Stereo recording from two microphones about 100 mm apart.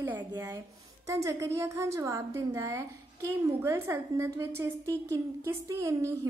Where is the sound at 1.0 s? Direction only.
30° right (ahead or behind).